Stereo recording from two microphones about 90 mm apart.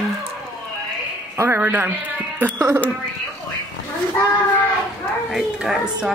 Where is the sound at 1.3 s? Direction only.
30° right (ahead or behind).